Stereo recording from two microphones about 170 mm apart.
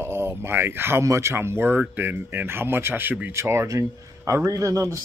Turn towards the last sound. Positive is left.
turn(degrees=-20)  # may be behind; listen again after turning